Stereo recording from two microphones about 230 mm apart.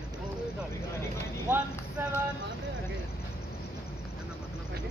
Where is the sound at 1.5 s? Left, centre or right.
Centre.